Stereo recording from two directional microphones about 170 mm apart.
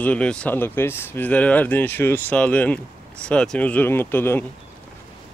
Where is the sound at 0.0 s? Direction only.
5° left (ahead or behind).